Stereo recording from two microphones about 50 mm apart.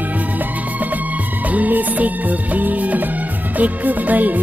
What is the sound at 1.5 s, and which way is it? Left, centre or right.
Music, right.